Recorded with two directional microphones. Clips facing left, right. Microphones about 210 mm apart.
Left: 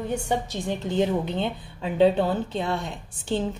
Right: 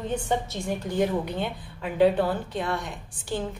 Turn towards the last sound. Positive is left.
turn(degrees=25)  # may be behind; listen again after turning